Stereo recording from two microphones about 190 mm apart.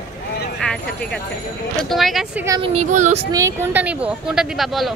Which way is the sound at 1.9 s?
Centre (ahead or behind).